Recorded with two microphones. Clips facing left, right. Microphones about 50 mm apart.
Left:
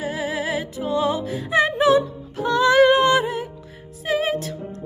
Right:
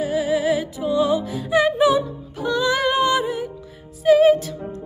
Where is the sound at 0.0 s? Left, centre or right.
Left.